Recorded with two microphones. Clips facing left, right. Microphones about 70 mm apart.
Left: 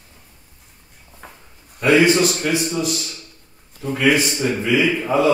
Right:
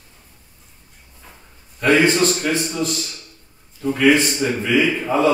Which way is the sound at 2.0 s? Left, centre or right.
Centre.